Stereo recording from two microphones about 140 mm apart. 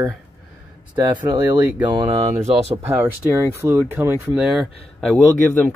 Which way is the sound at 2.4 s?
50° right (ahead or behind).